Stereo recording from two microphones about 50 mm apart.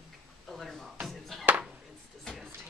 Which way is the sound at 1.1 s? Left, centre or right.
Centre.